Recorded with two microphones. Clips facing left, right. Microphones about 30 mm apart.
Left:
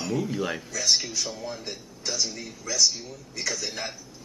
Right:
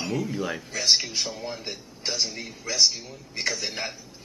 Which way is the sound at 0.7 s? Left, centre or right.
Right.